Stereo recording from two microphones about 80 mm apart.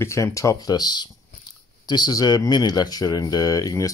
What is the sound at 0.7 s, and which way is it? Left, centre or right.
Speech, left.